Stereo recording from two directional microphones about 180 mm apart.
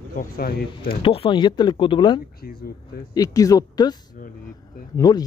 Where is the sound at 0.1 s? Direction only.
50° left (ahead or behind).